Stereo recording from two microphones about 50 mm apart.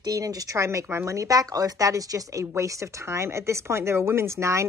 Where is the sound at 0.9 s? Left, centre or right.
Right.